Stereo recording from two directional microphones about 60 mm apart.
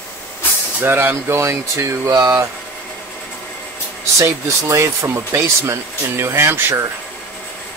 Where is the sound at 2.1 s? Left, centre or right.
Right.